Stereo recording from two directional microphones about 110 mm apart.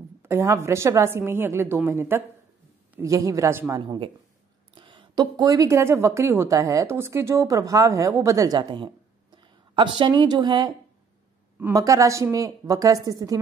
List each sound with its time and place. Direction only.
0.2 s speech: 25° right (ahead or behind)
4.7 s speech: 50° right (ahead or behind); by 8.5 s 30° right (ahead or behind)
8.5 s a woman's voice: 45° right (ahead or behind)
11.7 s a woman's voice: 30° right (ahead or behind)